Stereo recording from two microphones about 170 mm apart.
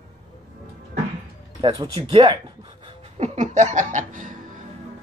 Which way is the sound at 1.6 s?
25° right (ahead or behind).